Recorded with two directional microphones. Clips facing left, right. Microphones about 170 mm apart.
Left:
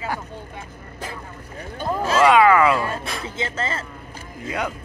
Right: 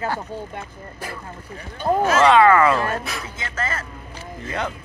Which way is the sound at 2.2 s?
10° left (ahead or behind).